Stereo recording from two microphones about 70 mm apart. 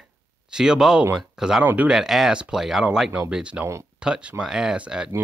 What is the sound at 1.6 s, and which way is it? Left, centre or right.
Speech, right.